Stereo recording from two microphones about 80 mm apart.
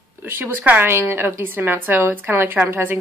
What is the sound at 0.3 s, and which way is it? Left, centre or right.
A woman's voice, right.